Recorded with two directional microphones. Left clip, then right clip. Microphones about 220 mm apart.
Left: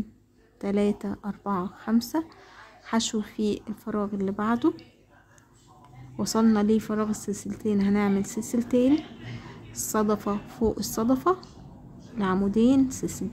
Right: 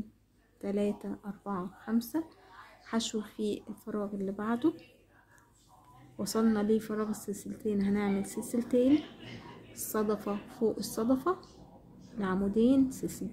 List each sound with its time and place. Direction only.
0.6 s speech: 20° left (ahead or behind)
6.1 s speech: 20° left (ahead or behind)